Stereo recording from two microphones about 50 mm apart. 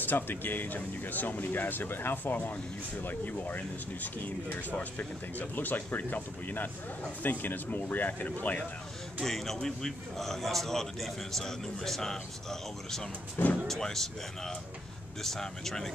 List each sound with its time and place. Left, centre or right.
0.0 s speech: left
9.2 s a man's voice: centre